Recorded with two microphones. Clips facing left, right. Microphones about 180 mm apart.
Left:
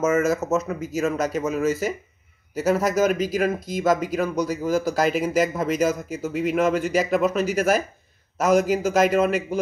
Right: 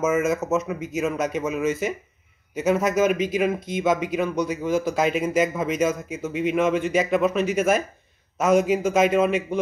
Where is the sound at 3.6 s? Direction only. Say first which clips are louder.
Left 1 dB; 40° left (ahead or behind).